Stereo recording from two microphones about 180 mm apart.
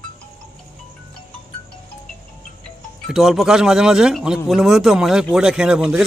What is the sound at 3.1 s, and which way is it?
A man's voice, centre (ahead or behind).